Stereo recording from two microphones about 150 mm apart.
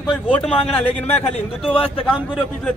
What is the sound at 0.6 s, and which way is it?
A man's voice, 45° left (ahead or behind).